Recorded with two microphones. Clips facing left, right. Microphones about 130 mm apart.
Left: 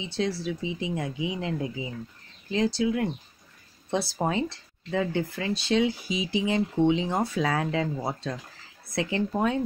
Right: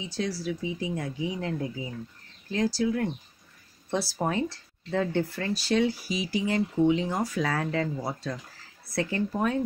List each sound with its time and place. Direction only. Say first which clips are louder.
0.0 s speech: left 2 dB; 25° left (ahead or behind)
2.5 s speech: left 1 dB; 20° left (ahead or behind)
4.9 s speech: even; 5° left (ahead or behind)
5.5 s speech: left 1 dB; 20° left (ahead or behind)